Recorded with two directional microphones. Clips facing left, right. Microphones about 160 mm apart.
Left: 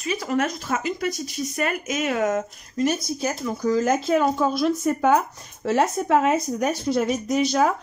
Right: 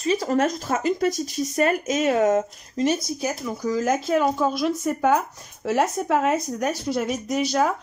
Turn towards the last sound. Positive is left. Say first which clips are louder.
# left 2 dB
turn(degrees=-5)  # may be behind; listen again after turning